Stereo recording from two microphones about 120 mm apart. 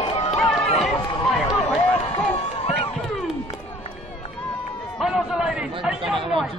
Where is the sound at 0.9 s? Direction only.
40° left (ahead or behind).